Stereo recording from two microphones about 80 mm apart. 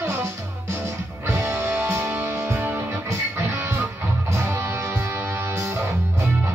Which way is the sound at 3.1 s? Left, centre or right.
Right.